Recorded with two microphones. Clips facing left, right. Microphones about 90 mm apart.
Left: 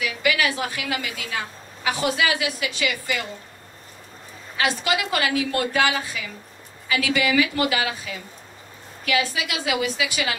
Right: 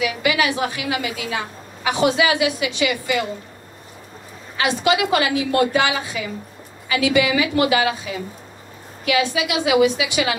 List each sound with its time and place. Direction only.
0.0 s a woman's voice: 20° right (ahead or behind)
4.6 s a woman's voice: 20° right (ahead or behind)